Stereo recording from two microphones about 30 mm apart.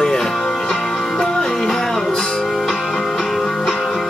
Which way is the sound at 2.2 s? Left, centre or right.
Left.